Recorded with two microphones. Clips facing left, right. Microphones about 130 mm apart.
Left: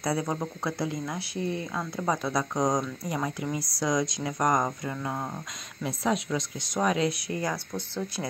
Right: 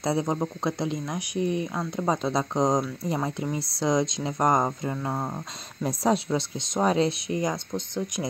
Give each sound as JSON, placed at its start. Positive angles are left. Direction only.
{"t": 0.0, "sound": "speech", "side_deg": -25}